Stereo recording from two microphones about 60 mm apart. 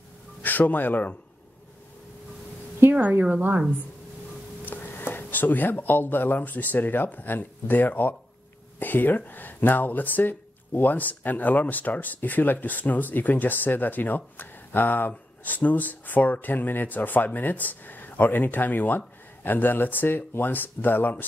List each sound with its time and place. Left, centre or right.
0.4 s speech: left
2.9 s speech: right
4.6 s speech: left